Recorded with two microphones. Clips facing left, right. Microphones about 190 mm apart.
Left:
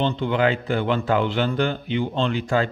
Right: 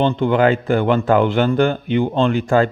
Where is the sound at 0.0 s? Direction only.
50° right (ahead or behind).